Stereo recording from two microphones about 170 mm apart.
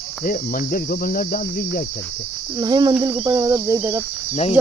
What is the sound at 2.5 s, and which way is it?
Cricket, 25° right (ahead or behind).